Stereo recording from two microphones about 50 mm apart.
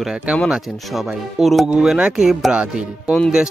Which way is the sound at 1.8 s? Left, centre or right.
Centre.